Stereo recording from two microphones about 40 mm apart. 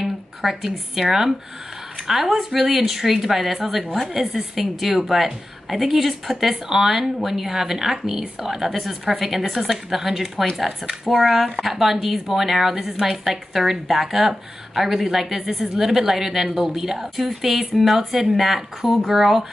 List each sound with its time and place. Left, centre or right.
0.0 s a woman's voice: centre